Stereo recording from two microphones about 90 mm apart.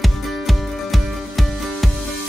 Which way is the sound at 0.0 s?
Centre (ahead or behind).